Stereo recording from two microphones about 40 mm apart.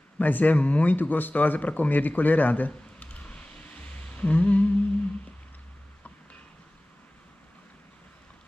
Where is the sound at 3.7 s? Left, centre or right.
Left.